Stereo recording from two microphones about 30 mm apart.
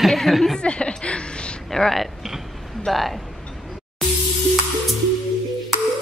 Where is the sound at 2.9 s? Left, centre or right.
Centre.